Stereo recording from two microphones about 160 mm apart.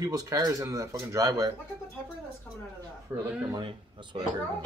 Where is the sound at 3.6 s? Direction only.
30° right (ahead or behind).